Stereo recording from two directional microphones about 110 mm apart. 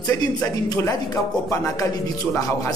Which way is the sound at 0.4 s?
30° left (ahead or behind).